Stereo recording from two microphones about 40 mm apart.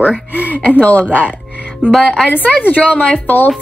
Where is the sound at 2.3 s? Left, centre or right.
Left.